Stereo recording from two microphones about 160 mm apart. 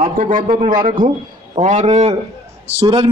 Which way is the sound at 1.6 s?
45° right (ahead or behind).